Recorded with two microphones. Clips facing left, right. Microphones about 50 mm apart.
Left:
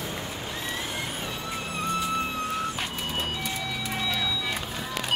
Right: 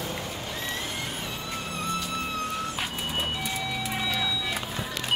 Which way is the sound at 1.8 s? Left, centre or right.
Left.